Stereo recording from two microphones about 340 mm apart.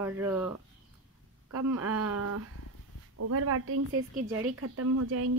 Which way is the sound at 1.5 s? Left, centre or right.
Right.